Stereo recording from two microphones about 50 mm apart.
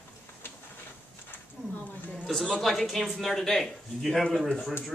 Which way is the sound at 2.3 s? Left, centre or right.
Centre.